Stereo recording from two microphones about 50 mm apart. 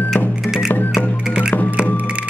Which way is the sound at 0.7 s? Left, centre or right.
Left.